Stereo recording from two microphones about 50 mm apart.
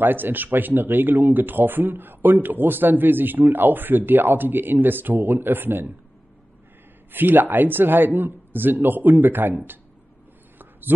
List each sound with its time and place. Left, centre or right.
0.0 s speech: right
7.1 s speech: right